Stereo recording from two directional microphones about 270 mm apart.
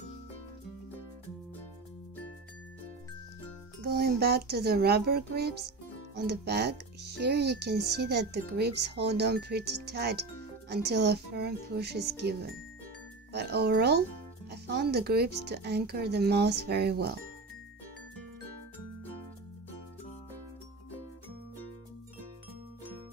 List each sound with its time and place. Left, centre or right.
3.8 s speech: right